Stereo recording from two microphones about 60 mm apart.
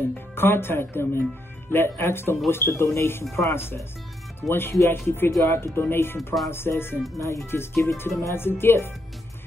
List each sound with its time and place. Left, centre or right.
0.4 s speech: left